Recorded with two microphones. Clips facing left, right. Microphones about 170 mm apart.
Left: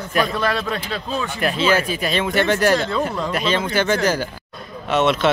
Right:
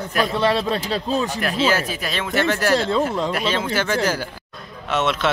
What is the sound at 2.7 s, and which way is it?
Speech, 25° right (ahead or behind).